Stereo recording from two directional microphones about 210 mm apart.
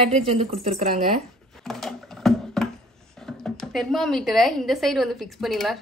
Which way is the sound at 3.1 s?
Centre (ahead or behind).